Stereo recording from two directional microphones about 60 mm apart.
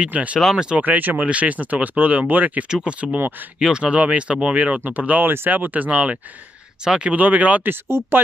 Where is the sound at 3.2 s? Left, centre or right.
Right.